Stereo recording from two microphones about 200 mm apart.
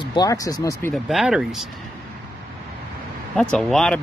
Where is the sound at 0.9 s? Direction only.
Centre (ahead or behind).